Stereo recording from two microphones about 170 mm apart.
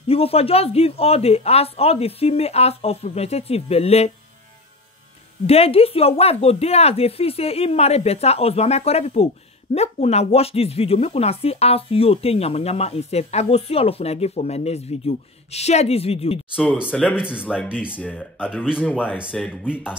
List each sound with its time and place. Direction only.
0.1 s speech: 35° left (ahead or behind)
5.5 s speech: 35° left (ahead or behind)
17.2 s speech: 5° right (ahead or behind)
19.4 s speech: 10° left (ahead or behind)